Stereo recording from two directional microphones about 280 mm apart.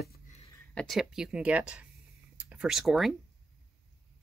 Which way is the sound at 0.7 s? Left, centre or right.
Centre.